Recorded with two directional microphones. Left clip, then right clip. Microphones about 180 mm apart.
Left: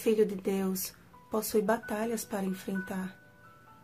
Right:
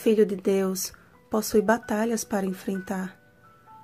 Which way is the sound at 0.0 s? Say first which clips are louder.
Right 6 dB; 25° right (ahead or behind).